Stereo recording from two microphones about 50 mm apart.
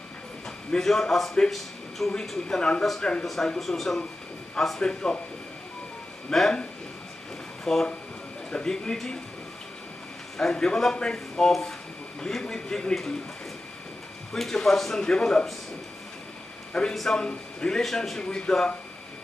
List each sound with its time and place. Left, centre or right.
0.7 s speech: centre
2.4 s speech: centre
3.5 s speech: centre
6.3 s speech: centre
7.6 s speech: centre
10.3 s speech: centre
14.3 s speech: centre
16.7 s speech: centre
18.2 s speech: centre